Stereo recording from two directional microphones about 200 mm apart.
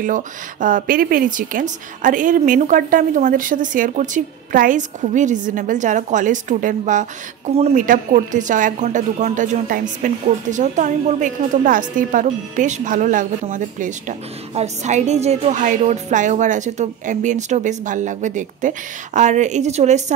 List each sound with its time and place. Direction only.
0.0 s a woman's voice: 40° right (ahead or behind)